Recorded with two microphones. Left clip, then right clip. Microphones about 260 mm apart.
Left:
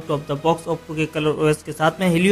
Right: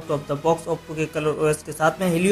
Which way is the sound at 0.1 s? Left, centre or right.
Left.